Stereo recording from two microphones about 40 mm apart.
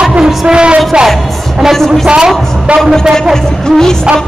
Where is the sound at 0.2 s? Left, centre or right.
Centre.